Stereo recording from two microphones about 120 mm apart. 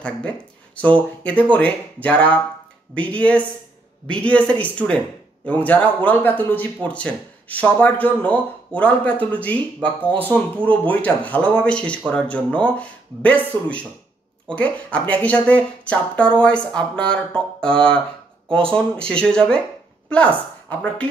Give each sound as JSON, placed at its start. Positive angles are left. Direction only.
{"t": 0.7, "sound": "a woman's voice", "side_deg": 10}